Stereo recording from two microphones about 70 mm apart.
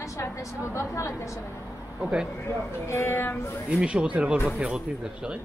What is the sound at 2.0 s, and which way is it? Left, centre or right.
Speech, centre.